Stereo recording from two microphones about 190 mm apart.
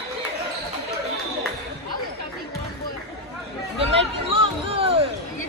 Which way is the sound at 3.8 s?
30° right (ahead or behind).